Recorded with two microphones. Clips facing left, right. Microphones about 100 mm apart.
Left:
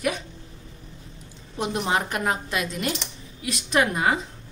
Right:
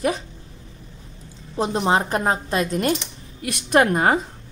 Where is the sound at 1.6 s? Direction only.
30° right (ahead or behind); by 4.2 s 45° right (ahead or behind).